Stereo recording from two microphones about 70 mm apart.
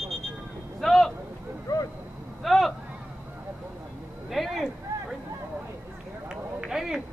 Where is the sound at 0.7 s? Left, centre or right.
Centre.